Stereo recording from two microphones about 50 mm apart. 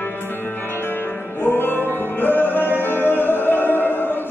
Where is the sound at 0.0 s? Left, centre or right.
Left.